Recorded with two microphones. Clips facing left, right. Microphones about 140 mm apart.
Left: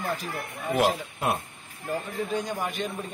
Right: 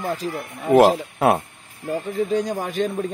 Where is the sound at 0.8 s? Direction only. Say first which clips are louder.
Right 10 dB; 90° right.